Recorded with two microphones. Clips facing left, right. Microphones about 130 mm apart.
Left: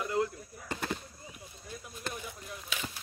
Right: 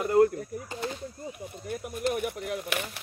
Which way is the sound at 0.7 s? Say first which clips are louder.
Left 1 dB; 55° left (ahead or behind).